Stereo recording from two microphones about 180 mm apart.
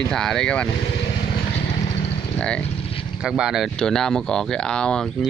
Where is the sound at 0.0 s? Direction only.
5° left (ahead or behind).